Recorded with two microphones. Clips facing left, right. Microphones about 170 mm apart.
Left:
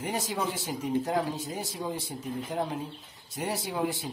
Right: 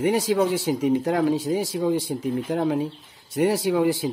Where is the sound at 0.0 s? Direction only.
85° right.